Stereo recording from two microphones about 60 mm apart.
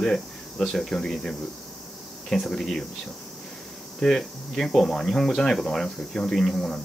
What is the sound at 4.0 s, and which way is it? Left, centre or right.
Speech, centre.